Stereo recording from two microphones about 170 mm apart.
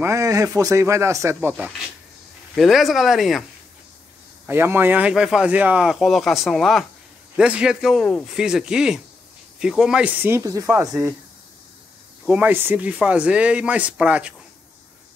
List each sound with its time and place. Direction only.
0.0 s speech: 15° right (ahead or behind); by 3.4 s centre (ahead or behind)
4.5 s speech: 15° right (ahead or behind)
12.3 s speech: 10° right (ahead or behind)